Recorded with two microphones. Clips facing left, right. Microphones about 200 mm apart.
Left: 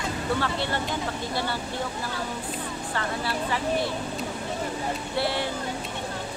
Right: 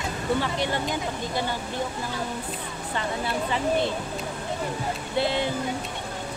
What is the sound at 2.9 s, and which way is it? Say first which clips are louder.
Speech: right 2 dB; 20° right (ahead or behind).